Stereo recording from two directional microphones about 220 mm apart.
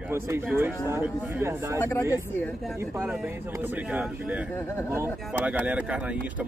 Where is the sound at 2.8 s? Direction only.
5° right (ahead or behind).